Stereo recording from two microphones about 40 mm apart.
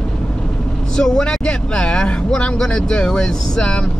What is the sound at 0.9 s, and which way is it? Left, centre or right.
Speech, centre.